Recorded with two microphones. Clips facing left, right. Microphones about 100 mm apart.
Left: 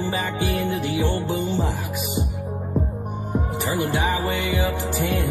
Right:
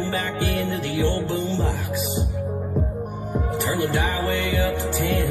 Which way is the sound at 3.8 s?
15° left (ahead or behind).